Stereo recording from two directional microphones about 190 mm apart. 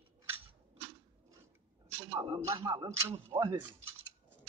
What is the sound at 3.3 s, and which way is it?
Speech, 15° right (ahead or behind).